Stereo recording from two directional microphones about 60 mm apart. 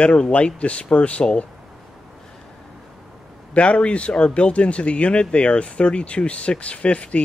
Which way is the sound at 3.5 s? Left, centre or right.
Left.